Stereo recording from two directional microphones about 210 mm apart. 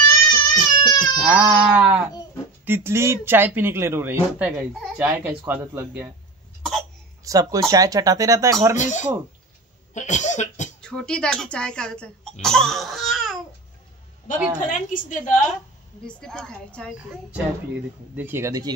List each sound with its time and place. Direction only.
0.3 s crying: 20° left (ahead or behind)
1.2 s speech: 5° right (ahead or behind)
7.2 s speech: 15° right (ahead or behind)
8.7 s a woman's voice: 35° left (ahead or behind)
9.9 s cough: 35° left (ahead or behind)
10.8 s speech: 5° left (ahead or behind)
14.4 s speech: 5° right (ahead or behind)
14.9 s a woman's voice: 40° left (ahead or behind)
16.1 s a woman's voice: 5° left (ahead or behind)
18.1 s speech: 10° right (ahead or behind)